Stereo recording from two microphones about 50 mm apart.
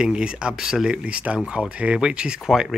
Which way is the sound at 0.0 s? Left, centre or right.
Centre.